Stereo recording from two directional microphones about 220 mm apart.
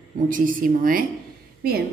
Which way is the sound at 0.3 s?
40° right (ahead or behind).